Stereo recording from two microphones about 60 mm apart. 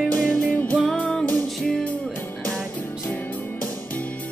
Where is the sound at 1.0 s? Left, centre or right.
Centre.